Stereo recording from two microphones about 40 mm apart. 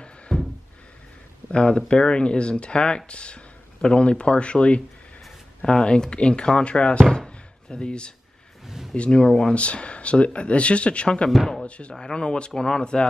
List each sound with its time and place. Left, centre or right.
0.3 s a sound: centre
1.5 s speech: left
8.6 s a sound: centre
8.9 s speech: left
9.2 s speech: centre
9.6 s speech: left
11.2 s speech: centre
11.6 s speech: left
11.9 s speech: centre